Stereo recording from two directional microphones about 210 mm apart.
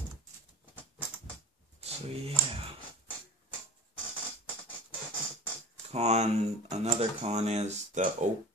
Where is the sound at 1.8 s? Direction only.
30° right (ahead or behind).